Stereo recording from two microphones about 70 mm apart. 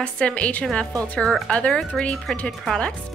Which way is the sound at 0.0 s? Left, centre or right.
Centre.